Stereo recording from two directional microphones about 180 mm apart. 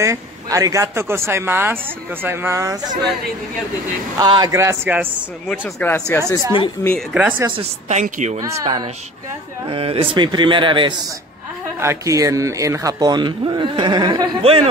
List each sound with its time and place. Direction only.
0.0 s speech: 15° right (ahead or behind)
4.2 s speech: 25° right (ahead or behind)
5.5 s speech: 10° left (ahead or behind)
7.0 s speech: 10° right (ahead or behind)
7.5 s a woman's voice: 40° right (ahead or behind)
8.4 s speech: 20° right (ahead or behind)
9.7 s speech: 30° right (ahead or behind)
11.8 s speech: 15° right (ahead or behind); by 14.7 s 30° right (ahead or behind)